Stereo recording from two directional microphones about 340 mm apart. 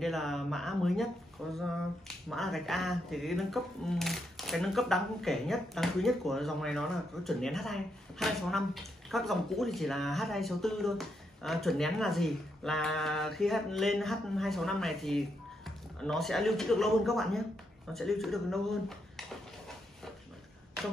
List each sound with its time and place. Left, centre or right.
0.0 s speech: centre